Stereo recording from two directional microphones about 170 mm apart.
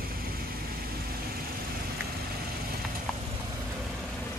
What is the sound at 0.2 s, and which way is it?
Vehicle, 60° right (ahead or behind).